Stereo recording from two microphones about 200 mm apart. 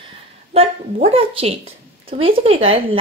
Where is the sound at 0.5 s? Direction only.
30° right (ahead or behind).